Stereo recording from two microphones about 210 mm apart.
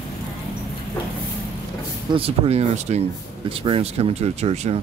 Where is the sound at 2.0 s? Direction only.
25° right (ahead or behind).